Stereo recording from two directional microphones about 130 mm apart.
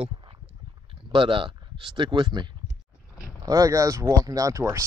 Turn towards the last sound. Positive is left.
turn(degrees=-25)  # may be behind; listen again after turning